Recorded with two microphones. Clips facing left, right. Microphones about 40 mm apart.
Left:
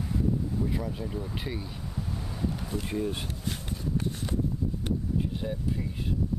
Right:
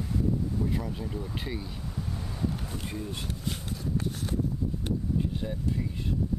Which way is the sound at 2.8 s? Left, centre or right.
Centre.